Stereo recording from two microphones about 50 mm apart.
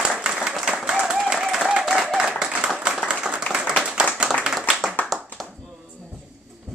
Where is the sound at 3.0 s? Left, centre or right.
Centre.